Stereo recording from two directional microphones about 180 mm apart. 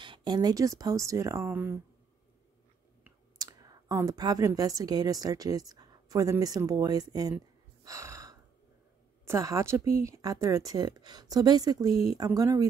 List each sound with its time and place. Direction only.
0.0 s speech: 25° right (ahead or behind)
3.0 s a woman's voice: 20° right (ahead or behind)